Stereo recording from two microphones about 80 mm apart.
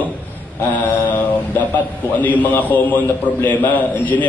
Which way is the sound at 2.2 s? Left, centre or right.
Left.